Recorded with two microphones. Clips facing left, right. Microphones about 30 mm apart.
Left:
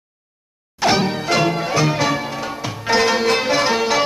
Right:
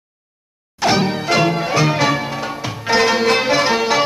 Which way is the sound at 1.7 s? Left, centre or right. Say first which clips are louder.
Right 2 dB; right.